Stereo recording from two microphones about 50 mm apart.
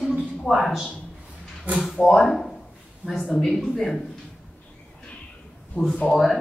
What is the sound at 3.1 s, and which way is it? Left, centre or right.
Speech, left.